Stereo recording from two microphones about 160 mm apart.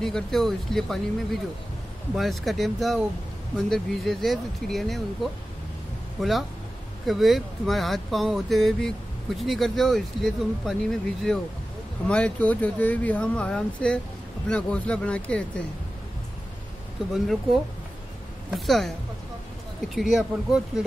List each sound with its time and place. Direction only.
0.0 s speech: centre (ahead or behind)
18.5 s speech: centre (ahead or behind)